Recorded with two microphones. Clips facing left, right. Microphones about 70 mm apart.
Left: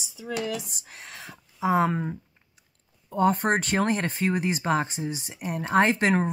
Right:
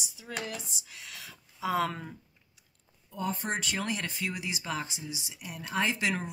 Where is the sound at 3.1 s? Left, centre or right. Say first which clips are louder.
Left 11 dB; left.